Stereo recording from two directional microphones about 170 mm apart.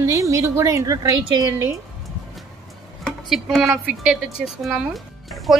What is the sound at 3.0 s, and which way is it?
A woman's voice, centre (ahead or behind).